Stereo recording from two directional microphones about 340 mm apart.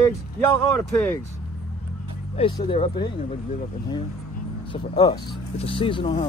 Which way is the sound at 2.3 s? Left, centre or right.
Centre.